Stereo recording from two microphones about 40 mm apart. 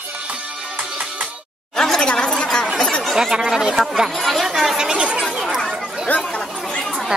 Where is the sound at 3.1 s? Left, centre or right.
Centre.